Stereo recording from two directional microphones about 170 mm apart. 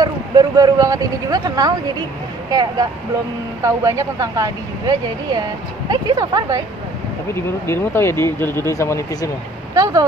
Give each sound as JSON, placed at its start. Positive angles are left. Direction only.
{"t": 0.0, "sound": "speech", "side_deg": -20}
{"t": 7.3, "sound": "speech", "side_deg": 15}